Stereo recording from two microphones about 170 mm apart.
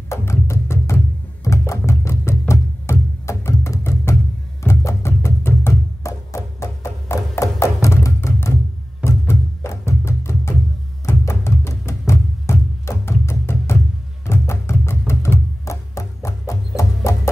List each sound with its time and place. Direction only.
0.1 s music: 15° left (ahead or behind)